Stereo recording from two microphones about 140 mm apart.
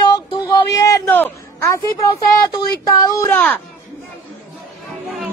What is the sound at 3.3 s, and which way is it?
Speech, 10° left (ahead or behind).